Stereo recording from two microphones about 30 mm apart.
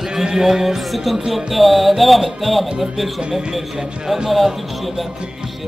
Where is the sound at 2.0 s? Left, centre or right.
Centre.